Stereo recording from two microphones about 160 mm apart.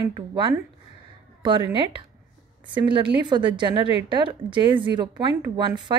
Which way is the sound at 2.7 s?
30° right (ahead or behind).